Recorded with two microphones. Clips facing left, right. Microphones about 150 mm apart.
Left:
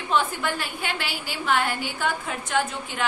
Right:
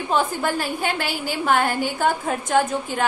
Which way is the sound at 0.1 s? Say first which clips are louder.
Right 3 dB; 40° right (ahead or behind).